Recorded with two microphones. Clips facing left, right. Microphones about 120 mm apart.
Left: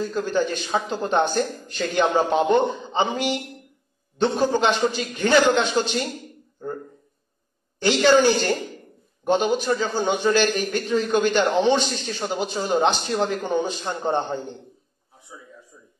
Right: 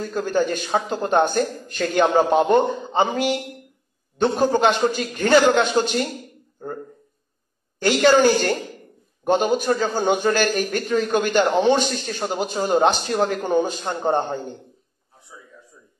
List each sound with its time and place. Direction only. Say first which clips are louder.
0.0 s a man's voice: right 1 dB; 50° right (ahead or behind)
4.2 s a man's voice: right 2 dB; 45° right (ahead or behind)
6.6 s a sound: left 1 dB; 45° right (ahead or behind)
8.0 s a man's voice: right 1 dB; 45° right (ahead or behind)